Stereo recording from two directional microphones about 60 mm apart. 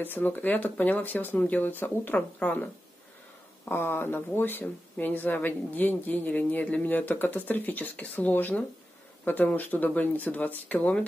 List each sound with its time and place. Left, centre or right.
0.0 s speech: left
3.7 s speech: left